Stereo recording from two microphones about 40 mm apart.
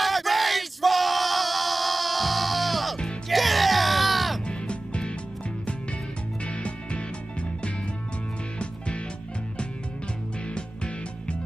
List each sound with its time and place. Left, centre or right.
0.0 s yell: centre
3.3 s music: centre
4.5 s music: left
6.4 s music: left
10.5 s music: left